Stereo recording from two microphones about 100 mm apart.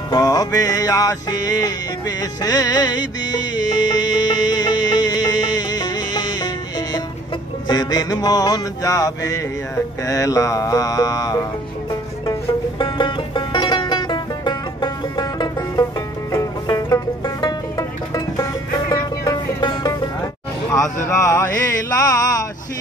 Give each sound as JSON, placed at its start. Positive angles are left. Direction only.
{"t": 0.1, "sound": "music", "side_deg": 40}
{"t": 12.3, "sound": "music", "side_deg": 55}